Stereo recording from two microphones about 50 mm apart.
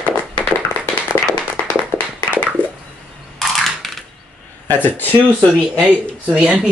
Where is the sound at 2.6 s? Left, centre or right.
Left.